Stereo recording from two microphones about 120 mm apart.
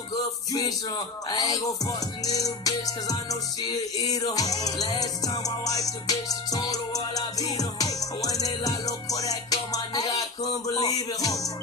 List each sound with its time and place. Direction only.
0.5 s music: 30° left (ahead or behind)